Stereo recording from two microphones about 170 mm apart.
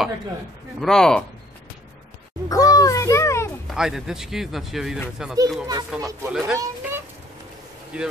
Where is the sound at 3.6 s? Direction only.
5° right (ahead or behind).